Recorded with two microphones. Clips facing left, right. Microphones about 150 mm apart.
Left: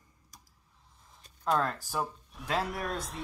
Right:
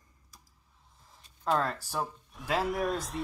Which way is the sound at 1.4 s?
Centre (ahead or behind).